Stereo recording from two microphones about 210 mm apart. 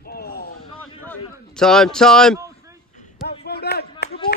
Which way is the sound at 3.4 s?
50° left (ahead or behind).